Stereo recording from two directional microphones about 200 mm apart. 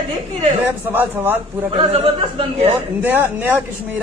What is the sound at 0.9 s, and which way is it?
Speech, 10° right (ahead or behind).